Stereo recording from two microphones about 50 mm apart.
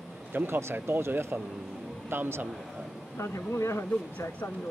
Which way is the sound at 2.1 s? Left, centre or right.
Right.